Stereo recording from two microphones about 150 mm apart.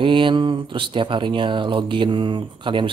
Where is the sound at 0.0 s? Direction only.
35° right (ahead or behind).